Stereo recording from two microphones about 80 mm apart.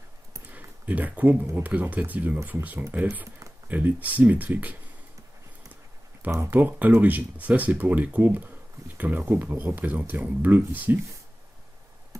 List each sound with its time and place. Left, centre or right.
0.5 s a sound: right
1.6 s speech: right
6.5 s speech: right